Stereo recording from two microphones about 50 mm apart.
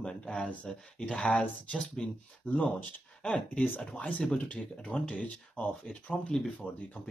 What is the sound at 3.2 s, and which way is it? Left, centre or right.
Speech, centre.